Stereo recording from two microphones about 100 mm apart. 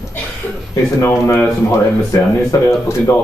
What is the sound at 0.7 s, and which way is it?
Speech, 30° left (ahead or behind).